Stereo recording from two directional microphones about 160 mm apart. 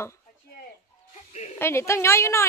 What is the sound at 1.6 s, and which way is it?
Speech, 15° left (ahead or behind).